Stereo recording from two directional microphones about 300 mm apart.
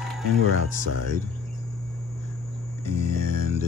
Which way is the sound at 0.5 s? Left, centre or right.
Left.